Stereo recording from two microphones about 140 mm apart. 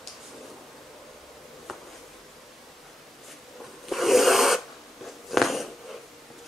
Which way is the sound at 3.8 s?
Centre (ahead or behind).